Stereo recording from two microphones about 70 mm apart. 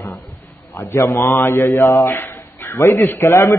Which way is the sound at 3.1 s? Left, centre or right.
Left.